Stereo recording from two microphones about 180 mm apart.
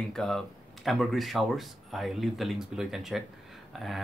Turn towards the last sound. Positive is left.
turn(degrees=0)  # may be behind; listen again after turning